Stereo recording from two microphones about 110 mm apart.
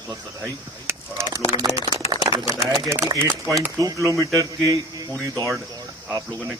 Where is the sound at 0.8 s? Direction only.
25° right (ahead or behind).